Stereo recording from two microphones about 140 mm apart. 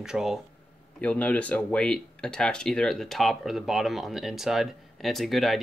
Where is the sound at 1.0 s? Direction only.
10° left (ahead or behind).